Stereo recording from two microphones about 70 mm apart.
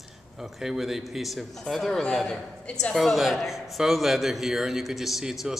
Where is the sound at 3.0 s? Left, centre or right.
Centre.